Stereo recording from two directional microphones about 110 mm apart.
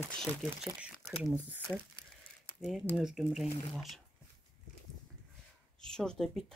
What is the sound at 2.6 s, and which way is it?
Speech, 5° right (ahead or behind).